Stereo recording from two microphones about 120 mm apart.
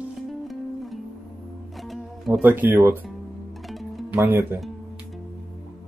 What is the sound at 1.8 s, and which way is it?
Music, centre (ahead or behind).